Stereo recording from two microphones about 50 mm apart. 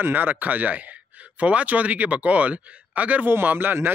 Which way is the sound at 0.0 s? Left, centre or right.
Right.